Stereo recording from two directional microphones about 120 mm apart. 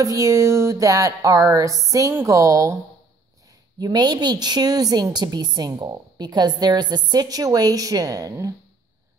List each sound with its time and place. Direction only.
0.0 s music: 25° right (ahead or behind)
3.8 s a woman's voice: 35° right (ahead or behind)